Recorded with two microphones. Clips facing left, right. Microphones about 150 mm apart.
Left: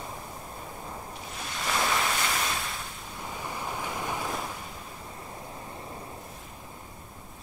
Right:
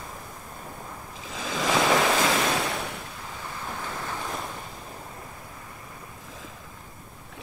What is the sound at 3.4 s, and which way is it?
Waves, 15° left (ahead or behind).